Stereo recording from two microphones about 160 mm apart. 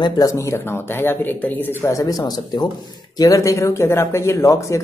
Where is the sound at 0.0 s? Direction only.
25° left (ahead or behind).